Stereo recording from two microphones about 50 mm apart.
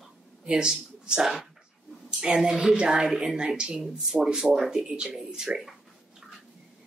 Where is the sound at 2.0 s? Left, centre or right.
Centre.